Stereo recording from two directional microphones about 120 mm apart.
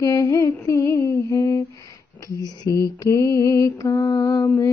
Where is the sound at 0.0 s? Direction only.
30° left (ahead or behind).